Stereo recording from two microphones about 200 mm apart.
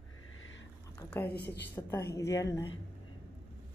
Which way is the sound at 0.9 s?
10° left (ahead or behind).